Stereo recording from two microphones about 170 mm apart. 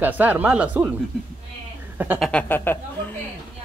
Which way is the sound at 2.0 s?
10° right (ahead or behind).